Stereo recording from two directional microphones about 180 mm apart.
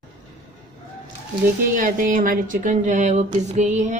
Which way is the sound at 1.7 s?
50° right (ahead or behind).